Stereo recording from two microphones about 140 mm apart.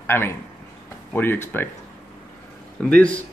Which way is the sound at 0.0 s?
15° left (ahead or behind).